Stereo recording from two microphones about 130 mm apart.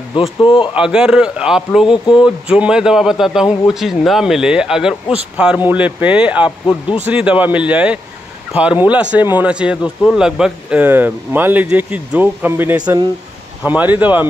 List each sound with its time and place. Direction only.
0.1 s speech: 40° left (ahead or behind)
0.7 s speech: 5° right (ahead or behind)